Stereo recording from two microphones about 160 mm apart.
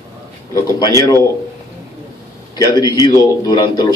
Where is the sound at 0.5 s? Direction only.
20° left (ahead or behind).